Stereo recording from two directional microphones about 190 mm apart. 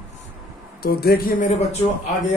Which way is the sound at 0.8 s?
55° left (ahead or behind).